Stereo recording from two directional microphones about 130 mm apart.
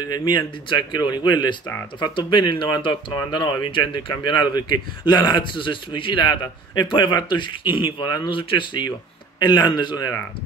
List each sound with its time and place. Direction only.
0.0 s speech: 30° left (ahead or behind)